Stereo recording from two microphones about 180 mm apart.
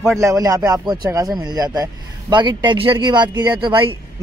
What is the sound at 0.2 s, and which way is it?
A man's voice, 20° right (ahead or behind).